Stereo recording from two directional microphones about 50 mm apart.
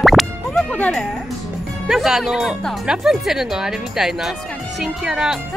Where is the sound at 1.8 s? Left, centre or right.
Centre.